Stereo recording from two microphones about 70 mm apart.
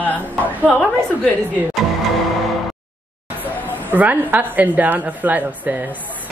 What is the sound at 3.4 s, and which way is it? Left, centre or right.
Speech, right.